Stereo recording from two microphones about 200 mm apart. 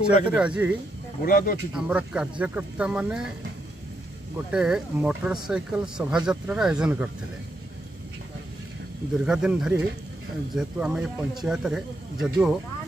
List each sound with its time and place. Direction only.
0.2 s speech: 5° right (ahead or behind)
1.2 s speech: 45° left (ahead or behind)
1.7 s speech: 5° right (ahead or behind)
4.5 s speech: 5° right (ahead or behind)
9.2 s speech: 5° right (ahead or behind)